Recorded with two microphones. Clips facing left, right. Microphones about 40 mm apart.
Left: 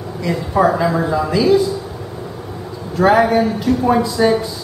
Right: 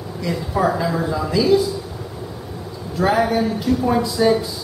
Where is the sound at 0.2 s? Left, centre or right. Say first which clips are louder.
Left 5 dB; centre.